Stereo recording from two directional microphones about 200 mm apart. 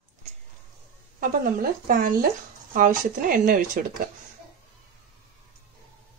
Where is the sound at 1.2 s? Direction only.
45° right (ahead or behind).